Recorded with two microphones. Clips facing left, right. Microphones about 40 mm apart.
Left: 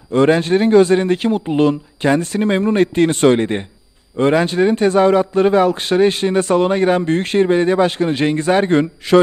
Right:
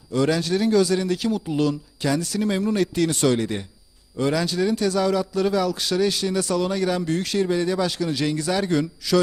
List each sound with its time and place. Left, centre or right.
0.1 s speech: left